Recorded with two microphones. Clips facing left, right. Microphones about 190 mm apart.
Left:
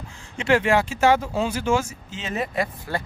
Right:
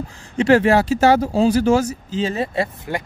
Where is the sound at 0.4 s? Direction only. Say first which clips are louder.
Right 6 dB; 40° right (ahead or behind).